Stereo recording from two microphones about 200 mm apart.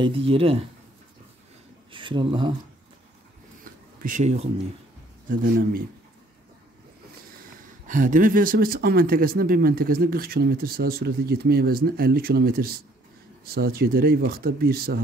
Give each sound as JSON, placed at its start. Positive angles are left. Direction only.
{"t": 0.0, "sound": "speech", "side_deg": -25}
{"t": 1.9, "sound": "speech", "side_deg": -25}
{"t": 4.0, "sound": "speech", "side_deg": -40}
{"t": 5.3, "sound": "speech", "side_deg": -45}
{"t": 7.9, "sound": "speech", "side_deg": -40}